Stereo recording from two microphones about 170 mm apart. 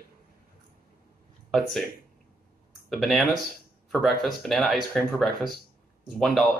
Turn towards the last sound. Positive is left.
turn(degrees=0)  # may be behind; listen again after turning